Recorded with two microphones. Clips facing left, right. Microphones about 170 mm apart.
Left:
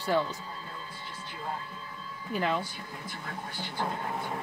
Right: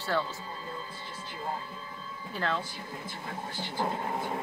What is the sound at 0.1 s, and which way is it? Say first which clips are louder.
Speech: left 3 dB; 15° left (ahead or behind).